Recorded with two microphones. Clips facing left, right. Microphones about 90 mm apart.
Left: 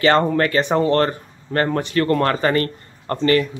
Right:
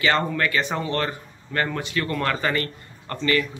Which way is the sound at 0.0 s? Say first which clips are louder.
Left 6 dB; 40° left (ahead or behind).